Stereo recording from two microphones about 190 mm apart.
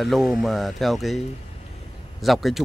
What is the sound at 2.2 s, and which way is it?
Speech, centre (ahead or behind).